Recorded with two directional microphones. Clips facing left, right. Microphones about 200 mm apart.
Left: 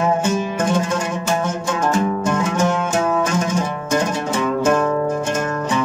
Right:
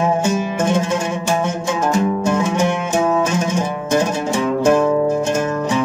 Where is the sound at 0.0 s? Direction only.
10° right (ahead or behind).